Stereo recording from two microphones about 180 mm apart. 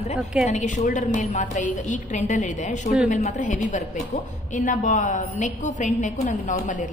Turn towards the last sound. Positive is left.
turn(degrees=45)  # may be behind; listen again after turning